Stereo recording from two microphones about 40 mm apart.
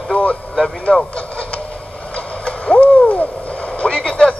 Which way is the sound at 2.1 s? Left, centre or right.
Left.